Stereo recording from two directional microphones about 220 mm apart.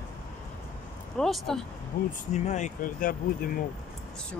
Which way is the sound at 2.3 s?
30° left (ahead or behind).